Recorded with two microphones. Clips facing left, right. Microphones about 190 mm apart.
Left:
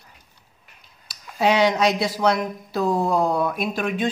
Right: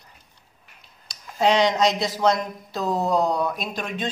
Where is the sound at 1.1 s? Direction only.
5° left (ahead or behind).